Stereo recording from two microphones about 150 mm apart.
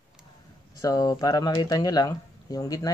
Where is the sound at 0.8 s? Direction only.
25° left (ahead or behind).